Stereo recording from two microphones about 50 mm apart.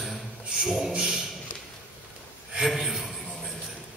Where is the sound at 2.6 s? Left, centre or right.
Centre.